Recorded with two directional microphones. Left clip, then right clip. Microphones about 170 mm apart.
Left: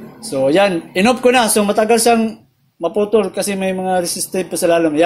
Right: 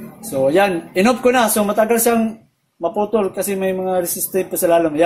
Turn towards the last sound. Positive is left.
turn(degrees=30)  # may be behind; listen again after turning